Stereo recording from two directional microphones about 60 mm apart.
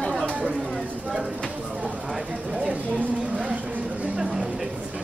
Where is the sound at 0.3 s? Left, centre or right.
Centre.